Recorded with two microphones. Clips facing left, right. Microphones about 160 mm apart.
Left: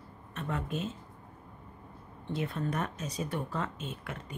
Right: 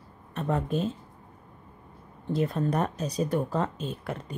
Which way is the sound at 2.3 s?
35° right (ahead or behind).